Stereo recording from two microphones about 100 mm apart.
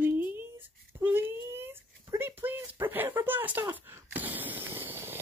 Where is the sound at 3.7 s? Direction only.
20° right (ahead or behind).